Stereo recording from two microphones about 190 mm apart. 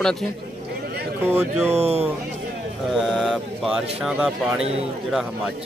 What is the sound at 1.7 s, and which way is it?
Speech, 35° right (ahead or behind).